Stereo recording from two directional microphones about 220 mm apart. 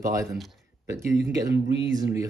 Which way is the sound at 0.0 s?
15° right (ahead or behind).